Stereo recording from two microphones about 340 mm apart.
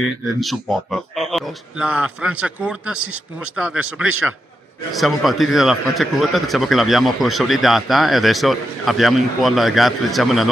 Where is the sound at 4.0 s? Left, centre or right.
Centre.